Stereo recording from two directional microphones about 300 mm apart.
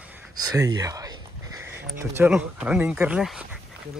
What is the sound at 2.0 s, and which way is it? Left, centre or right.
Speech, centre.